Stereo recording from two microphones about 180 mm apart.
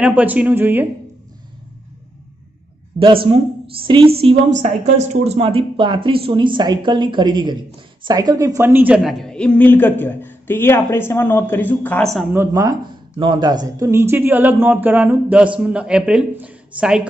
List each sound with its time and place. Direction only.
0.0 s speech: 10° right (ahead or behind)
3.0 s speech: 30° right (ahead or behind)
4.6 s a woman's voice: 40° right (ahead or behind); by 12.3 s centre (ahead or behind)
12.3 s speech: 15° right (ahead or behind)